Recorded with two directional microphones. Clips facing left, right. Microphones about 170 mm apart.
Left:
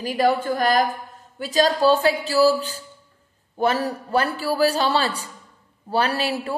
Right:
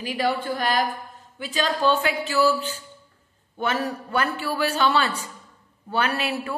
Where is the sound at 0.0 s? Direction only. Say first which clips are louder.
Left 5 dB; 45° left (ahead or behind).